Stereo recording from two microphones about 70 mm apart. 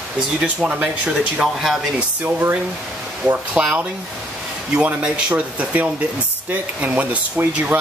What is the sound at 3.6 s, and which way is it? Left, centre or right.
Speech, right.